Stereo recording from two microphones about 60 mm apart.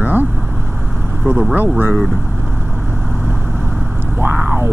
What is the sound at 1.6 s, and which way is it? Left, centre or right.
Speech, right.